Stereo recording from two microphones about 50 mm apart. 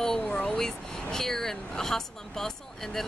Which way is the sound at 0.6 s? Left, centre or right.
Centre.